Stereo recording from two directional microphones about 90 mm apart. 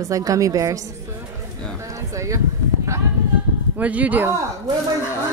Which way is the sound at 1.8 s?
35° right (ahead or behind).